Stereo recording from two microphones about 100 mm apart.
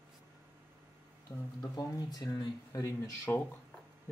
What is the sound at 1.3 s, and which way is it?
Speech, 30° left (ahead or behind).